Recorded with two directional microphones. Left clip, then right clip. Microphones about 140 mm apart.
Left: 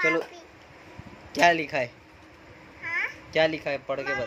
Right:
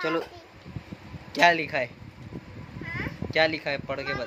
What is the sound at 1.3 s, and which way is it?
Speech, 10° left (ahead or behind).